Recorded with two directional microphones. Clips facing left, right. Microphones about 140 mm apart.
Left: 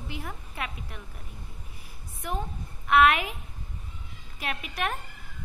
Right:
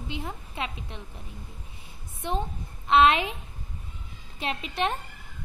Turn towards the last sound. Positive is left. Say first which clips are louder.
# right 3 dB
turn(degrees=-25)  # may be behind; listen again after turning